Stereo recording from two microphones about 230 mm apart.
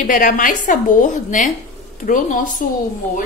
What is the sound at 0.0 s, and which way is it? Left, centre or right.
A woman's voice, left.